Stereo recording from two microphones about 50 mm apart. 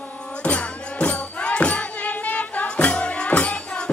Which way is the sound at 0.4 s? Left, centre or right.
Left.